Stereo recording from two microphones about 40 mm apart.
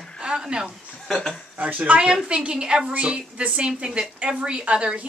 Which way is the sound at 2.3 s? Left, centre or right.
Right.